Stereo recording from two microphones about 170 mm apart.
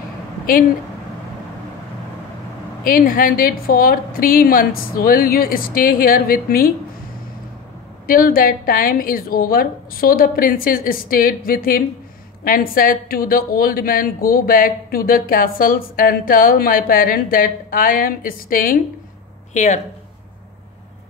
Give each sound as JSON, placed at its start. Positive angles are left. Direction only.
{"t": 2.8, "sound": "a woman's voice", "side_deg": 55}
{"t": 8.1, "sound": "a woman's voice", "side_deg": 55}
{"t": 19.5, "sound": "speech", "side_deg": 45}